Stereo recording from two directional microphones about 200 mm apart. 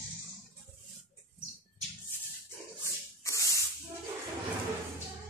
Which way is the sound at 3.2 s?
15° left (ahead or behind).